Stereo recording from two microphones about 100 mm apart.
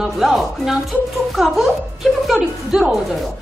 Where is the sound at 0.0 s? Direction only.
5° right (ahead or behind).